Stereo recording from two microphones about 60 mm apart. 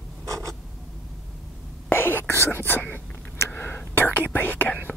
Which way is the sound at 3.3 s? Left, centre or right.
Left.